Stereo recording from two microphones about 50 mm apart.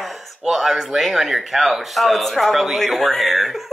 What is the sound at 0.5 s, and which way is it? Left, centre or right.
Speech, centre.